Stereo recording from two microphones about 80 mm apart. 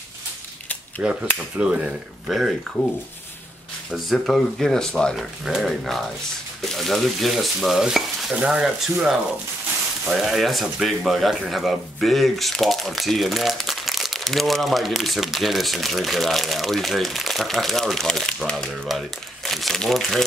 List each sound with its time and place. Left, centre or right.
1.0 s speech: centre
2.3 s speech: centre
3.9 s speech: centre
10.0 s speech: centre